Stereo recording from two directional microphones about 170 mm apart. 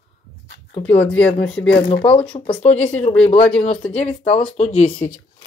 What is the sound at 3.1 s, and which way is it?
Speech, 5° left (ahead or behind).